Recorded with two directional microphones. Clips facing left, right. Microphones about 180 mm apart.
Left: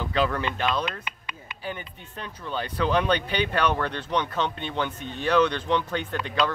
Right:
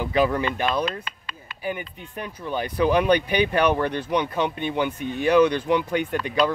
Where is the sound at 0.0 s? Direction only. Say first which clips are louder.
Right 4 dB; 10° right (ahead or behind).